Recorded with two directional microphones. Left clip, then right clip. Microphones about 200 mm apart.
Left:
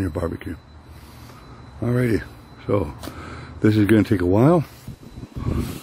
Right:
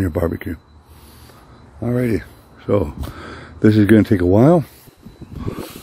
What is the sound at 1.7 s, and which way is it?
Speech, 25° right (ahead or behind).